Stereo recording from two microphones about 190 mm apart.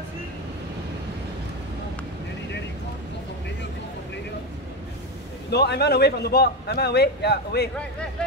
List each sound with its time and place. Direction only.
5.5 s a man's voice: 60° left (ahead or behind)